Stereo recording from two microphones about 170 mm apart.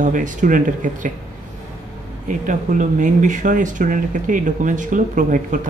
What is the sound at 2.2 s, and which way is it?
Speech, 50° right (ahead or behind).